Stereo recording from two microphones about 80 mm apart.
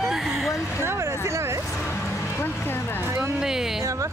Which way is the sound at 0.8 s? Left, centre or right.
Right.